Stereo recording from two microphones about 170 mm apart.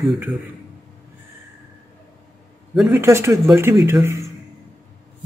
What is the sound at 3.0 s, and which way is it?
A man's voice, 15° right (ahead or behind).